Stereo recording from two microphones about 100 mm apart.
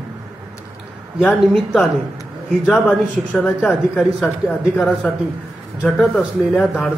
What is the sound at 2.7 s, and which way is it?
Speech, 15° left (ahead or behind).